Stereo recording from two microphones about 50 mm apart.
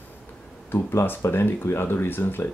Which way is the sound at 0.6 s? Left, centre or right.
Left.